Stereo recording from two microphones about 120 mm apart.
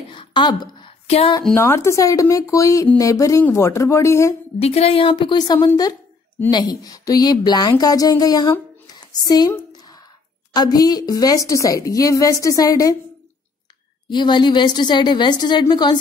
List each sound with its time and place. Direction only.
0.1 s a sound: 40° left (ahead or behind)
1.0 s speech: 60° left (ahead or behind)
1.5 s a woman's voice: 20° left (ahead or behind)
4.6 s a woman's voice: 55° left (ahead or behind); by 12.9 s 30° left (ahead or behind)
14.0 s a woman's voice: 40° left (ahead or behind)